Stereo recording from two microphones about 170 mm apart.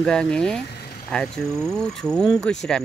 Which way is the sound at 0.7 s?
70° left (ahead or behind).